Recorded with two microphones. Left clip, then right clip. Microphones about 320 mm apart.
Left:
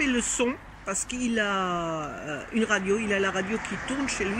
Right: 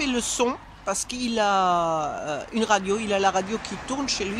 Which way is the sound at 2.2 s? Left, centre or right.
Right.